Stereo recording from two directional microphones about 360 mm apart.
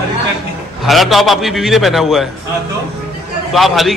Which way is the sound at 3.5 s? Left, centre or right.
Centre.